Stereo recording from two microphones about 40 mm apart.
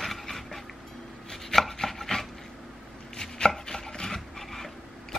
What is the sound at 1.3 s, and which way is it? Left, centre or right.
Chopping, centre.